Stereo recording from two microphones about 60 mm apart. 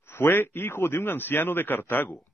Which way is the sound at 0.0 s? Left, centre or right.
Left.